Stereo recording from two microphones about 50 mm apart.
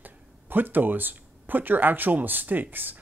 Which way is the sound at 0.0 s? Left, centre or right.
Right.